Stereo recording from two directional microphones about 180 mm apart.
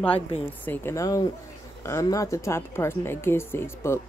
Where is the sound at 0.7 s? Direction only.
15° left (ahead or behind).